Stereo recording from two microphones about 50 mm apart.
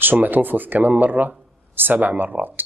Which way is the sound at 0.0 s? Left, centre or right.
Right.